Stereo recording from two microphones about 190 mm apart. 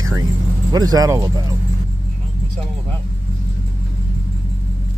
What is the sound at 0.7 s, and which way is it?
Speech, 20° right (ahead or behind).